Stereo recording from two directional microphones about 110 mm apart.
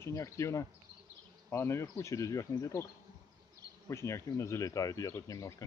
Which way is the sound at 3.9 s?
25° left (ahead or behind).